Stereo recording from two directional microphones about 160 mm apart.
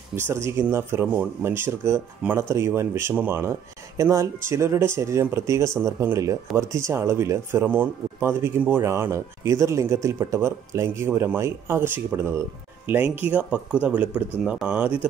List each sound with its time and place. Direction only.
0.1 s speech: 15° right (ahead or behind)